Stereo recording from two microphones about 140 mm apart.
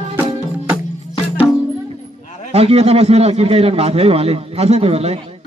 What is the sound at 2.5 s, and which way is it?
A man's voice, 50° right (ahead or behind).